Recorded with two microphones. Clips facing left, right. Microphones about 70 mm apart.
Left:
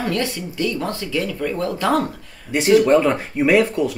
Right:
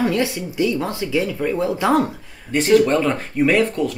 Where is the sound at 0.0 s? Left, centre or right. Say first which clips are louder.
Right 3 dB; centre.